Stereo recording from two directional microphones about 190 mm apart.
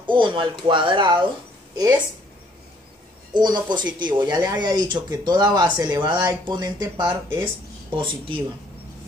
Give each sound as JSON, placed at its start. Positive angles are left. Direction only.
{"t": 0.0, "sound": "speech", "side_deg": -25}
{"t": 3.3, "sound": "speech", "side_deg": -20}
{"t": 7.9, "sound": "speech", "side_deg": -25}